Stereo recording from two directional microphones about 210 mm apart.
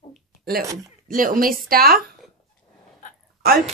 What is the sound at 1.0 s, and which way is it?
Speech, 40° right (ahead or behind).